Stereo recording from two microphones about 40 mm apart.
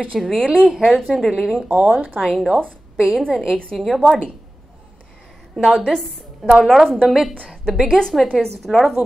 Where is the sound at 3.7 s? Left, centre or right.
Centre.